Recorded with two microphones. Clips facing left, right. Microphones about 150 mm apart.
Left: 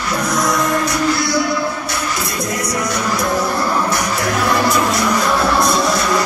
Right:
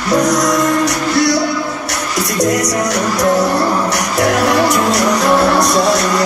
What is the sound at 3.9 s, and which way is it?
Music, 75° right (ahead or behind).